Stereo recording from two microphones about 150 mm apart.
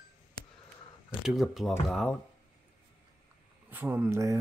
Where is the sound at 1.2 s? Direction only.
5° right (ahead or behind).